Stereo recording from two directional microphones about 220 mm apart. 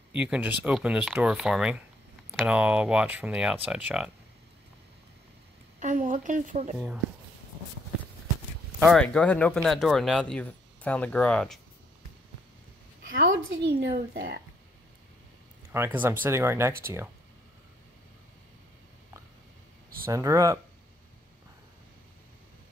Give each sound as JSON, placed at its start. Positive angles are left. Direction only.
{"t": 0.1, "sound": "speech", "side_deg": -5}
{"t": 5.8, "sound": "a woman's voice", "side_deg": -35}
{"t": 8.7, "sound": "speech", "side_deg": 5}
{"t": 13.2, "sound": "a woman's voice", "side_deg": -60}
{"t": 13.9, "sound": "a woman's voice", "side_deg": -40}
{"t": 15.7, "sound": "speech", "side_deg": -10}
{"t": 20.1, "sound": "speech", "side_deg": -15}